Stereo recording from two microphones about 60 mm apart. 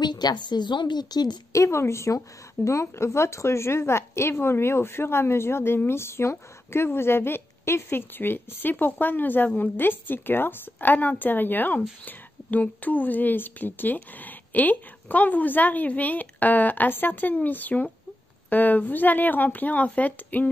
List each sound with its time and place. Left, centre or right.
0.2 s a woman's voice: left
1.5 s a woman's voice: left